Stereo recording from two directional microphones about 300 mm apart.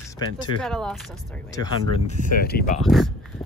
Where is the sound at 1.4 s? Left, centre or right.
Centre.